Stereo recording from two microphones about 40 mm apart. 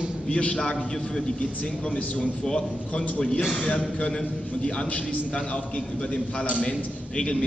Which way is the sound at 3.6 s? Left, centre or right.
Left.